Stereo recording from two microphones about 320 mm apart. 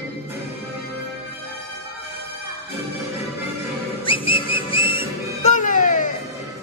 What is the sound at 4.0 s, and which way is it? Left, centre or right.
Whistle, centre.